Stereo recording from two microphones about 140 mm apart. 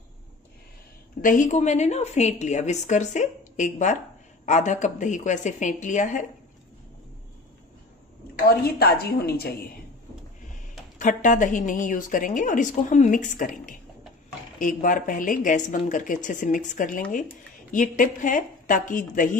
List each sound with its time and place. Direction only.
1.2 s a woman's voice: 65° left (ahead or behind)
8.7 s a woman's voice: 90° left
11.0 s a woman's voice: 65° left (ahead or behind)